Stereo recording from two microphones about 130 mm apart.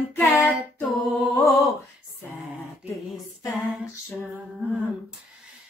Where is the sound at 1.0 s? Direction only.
Centre (ahead or behind).